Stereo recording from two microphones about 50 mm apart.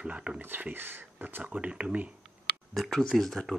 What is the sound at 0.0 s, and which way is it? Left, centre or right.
Speech, right.